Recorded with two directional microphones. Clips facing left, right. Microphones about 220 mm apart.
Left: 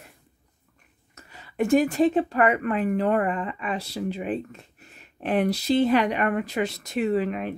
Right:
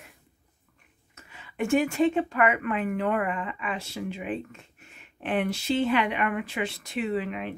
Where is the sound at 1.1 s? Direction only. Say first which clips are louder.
Left 2 dB; 40° left (ahead or behind).